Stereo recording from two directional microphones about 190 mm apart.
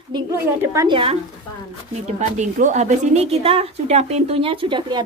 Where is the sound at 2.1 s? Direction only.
40° right (ahead or behind); by 5.0 s 25° right (ahead or behind).